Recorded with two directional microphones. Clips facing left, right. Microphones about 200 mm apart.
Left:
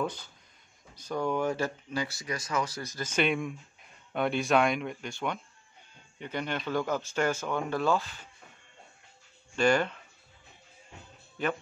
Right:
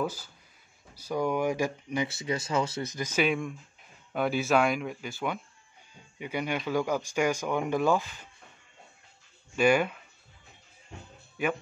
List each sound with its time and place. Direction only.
0.0 s speech: 5° right (ahead or behind)
3.2 s speech: centre (ahead or behind)
9.6 s speech: 10° right (ahead or behind)